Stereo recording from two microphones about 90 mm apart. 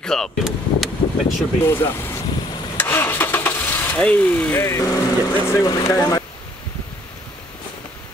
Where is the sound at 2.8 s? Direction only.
20° left (ahead or behind).